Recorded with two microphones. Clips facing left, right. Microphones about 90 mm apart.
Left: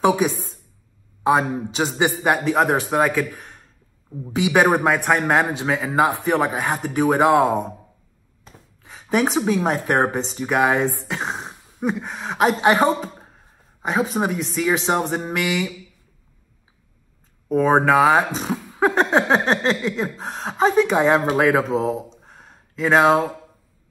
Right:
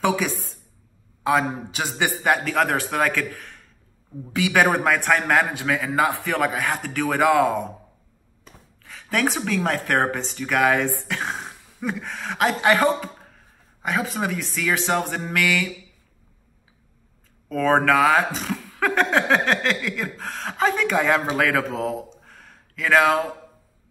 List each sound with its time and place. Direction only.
1.2 s speech: 25° left (ahead or behind)
8.8 s speech: 25° left (ahead or behind)
17.5 s speech: 20° left (ahead or behind)
21.7 s a sound: 25° left (ahead or behind)